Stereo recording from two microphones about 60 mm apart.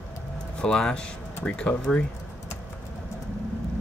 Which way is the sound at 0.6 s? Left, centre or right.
Centre.